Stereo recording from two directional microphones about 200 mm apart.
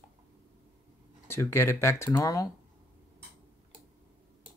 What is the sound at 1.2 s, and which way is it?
Speech, 10° left (ahead or behind).